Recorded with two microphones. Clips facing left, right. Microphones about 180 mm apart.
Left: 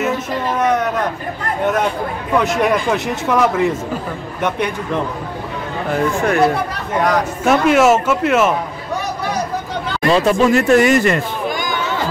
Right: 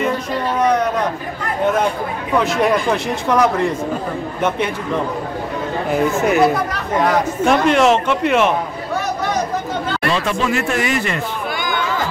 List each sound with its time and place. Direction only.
0.0 s a sound: 5° left (ahead or behind)
2.3 s speech: centre (ahead or behind)
5.9 s speech: 5° right (ahead or behind)
10.0 s speech: 40° left (ahead or behind)